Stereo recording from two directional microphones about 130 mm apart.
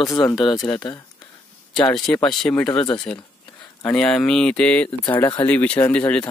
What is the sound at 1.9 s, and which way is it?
Speech, 5° left (ahead or behind).